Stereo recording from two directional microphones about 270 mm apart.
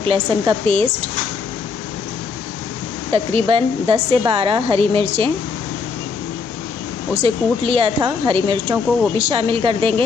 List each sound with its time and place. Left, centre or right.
0.0 s a woman's voice: centre
3.1 s a woman's voice: right
7.2 s a woman's voice: right